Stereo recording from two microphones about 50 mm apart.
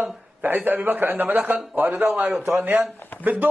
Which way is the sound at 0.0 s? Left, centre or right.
Right.